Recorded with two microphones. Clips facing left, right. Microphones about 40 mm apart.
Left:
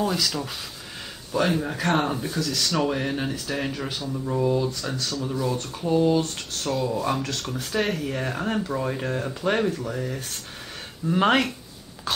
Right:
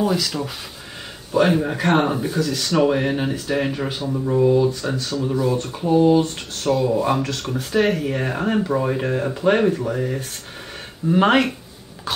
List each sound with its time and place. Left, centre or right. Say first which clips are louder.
0.0 s speech: right 4 dB; centre
6.5 s speech: right 6 dB; centre
6.9 s speech: right 6 dB; centre
7.2 s speech: right 4 dB; centre
8.0 s speech: right 5 dB; centre